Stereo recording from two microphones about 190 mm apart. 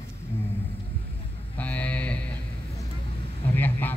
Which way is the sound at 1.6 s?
5° left (ahead or behind).